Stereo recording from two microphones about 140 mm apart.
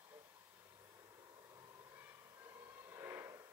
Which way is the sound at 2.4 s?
20° right (ahead or behind).